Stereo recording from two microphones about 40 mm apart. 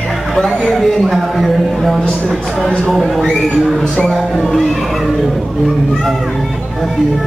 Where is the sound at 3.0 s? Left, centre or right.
Centre.